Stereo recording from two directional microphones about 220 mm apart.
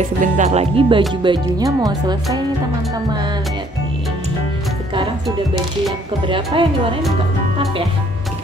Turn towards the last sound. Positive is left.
turn(degrees=-25)  # may be behind; listen again after turning